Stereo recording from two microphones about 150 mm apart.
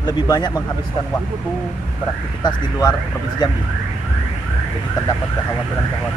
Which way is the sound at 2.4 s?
25° left (ahead or behind).